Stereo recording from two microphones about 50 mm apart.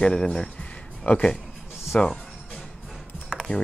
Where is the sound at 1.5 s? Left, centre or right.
Centre.